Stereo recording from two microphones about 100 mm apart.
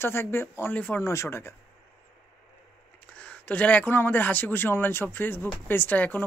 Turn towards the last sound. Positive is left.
turn(degrees=20)  # may be behind; listen again after turning